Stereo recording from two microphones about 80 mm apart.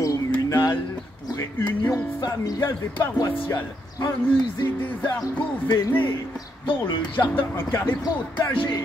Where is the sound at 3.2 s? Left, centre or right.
Left.